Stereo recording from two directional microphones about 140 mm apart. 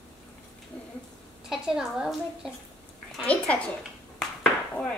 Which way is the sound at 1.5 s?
5° right (ahead or behind).